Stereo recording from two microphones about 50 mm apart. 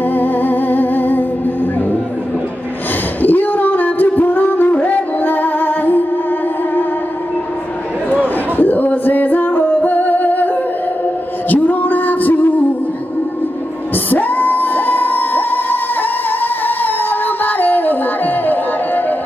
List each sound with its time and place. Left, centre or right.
0.1 s music: left
3.2 s music: left
8.5 s music: left
14.1 s singing: left